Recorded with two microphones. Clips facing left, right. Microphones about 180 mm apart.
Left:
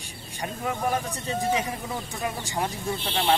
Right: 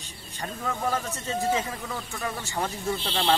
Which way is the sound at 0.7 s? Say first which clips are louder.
Left 1 dB; 15° left (ahead or behind).